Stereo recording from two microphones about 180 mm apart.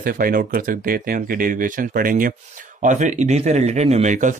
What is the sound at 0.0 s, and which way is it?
Speech, 50° right (ahead or behind).